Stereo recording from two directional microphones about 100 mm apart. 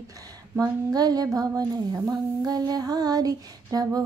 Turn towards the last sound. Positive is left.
turn(degrees=-40)  # may be behind; listen again after turning